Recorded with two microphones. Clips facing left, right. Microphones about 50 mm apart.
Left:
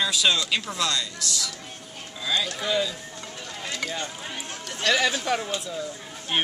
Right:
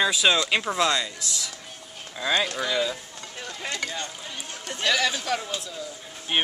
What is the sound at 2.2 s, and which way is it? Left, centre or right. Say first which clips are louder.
Speech: right 3 dB; right.